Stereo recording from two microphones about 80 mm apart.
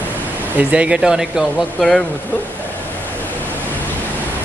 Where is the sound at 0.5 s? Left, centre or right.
Centre.